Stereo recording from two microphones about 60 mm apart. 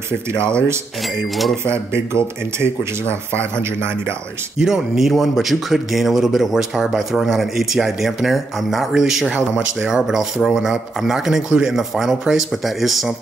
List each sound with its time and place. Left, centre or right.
0.3 s speech: right
2.6 s speech: right
4.6 s speech: centre